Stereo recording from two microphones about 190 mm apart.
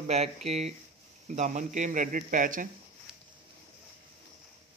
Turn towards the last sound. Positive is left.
turn(degrees=-5)  # may be behind; listen again after turning